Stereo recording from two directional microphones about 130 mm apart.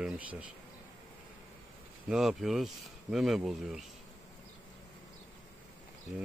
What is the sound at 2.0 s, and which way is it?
Speech, 5° right (ahead or behind).